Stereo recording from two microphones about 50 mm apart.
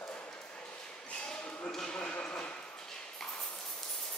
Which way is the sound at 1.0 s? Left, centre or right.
Centre.